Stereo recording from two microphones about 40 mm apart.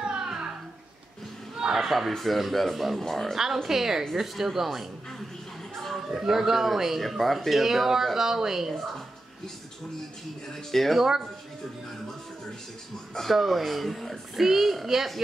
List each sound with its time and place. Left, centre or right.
0.0 s a sound: centre
1.8 s speech: centre
3.6 s speech: centre
5.9 s speech: centre
10.5 s speech: centre
11.0 s speech: centre
13.1 s speech: centre